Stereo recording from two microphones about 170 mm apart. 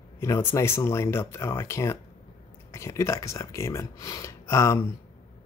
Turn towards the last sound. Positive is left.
turn(degrees=15)  # may be behind; listen again after turning